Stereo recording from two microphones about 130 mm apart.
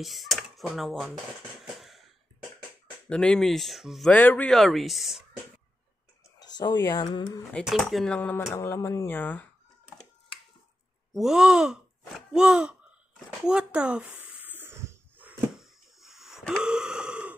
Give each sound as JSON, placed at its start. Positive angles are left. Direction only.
{"t": 0.0, "sound": "speech", "side_deg": 0}
{"t": 1.7, "sound": "a sound", "side_deg": 0}
{"t": 3.1, "sound": "speech", "side_deg": 5}
{"t": 4.1, "sound": "speech", "side_deg": 10}
{"t": 6.4, "sound": "speech", "side_deg": 35}
{"t": 7.5, "sound": "speech", "side_deg": 0}
{"t": 11.1, "sound": "speech", "side_deg": 0}
{"t": 14.2, "sound": "a sound", "side_deg": -15}
{"t": 15.6, "sound": "wheeze", "side_deg": 0}